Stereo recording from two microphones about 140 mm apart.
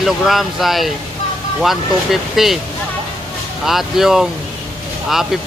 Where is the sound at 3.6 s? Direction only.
Centre (ahead or behind).